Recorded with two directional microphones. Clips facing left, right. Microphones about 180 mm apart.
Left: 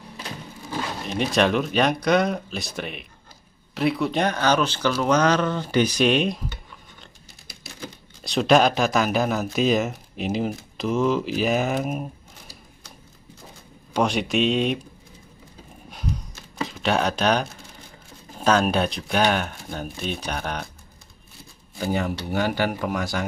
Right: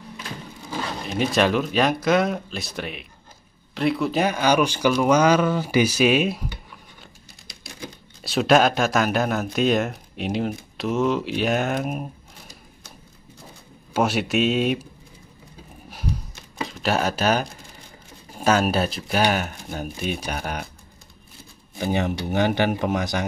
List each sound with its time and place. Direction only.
1.0 s speech: centre (ahead or behind)
13.9 s speech: 5° right (ahead or behind)
16.6 s speech: centre (ahead or behind)
21.7 s speech: 20° right (ahead or behind)